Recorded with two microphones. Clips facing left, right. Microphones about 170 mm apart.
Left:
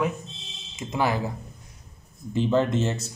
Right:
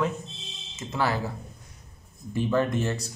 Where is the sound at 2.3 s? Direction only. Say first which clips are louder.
Left 2 dB; 20° left (ahead or behind).